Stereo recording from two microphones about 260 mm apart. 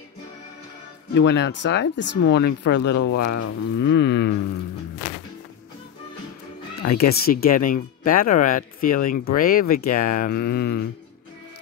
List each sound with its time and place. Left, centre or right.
1.1 s speech: left
3.0 s speech: left
3.7 s a sound: left
7.0 s speech: left